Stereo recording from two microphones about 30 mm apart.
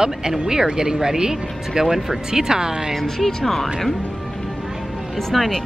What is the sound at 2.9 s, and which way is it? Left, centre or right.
Speech, centre.